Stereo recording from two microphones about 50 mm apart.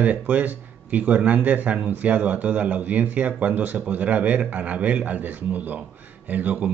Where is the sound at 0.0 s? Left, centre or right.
Right.